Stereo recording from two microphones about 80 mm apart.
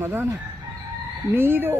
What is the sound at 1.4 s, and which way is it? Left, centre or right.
Speech, right.